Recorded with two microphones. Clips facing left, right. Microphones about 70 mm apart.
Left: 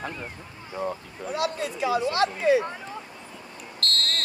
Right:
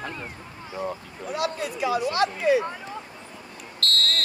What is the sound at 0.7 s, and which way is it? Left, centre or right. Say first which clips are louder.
Speech: left 1 dB; centre.